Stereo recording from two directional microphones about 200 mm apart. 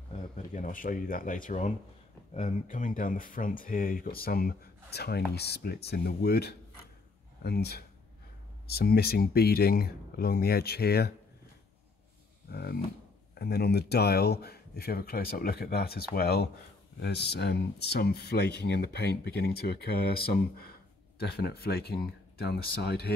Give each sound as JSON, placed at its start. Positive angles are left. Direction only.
{"t": 0.1, "sound": "speech", "side_deg": 40}
{"t": 12.4, "sound": "speech", "side_deg": 50}
{"t": 21.2, "sound": "speech", "side_deg": 50}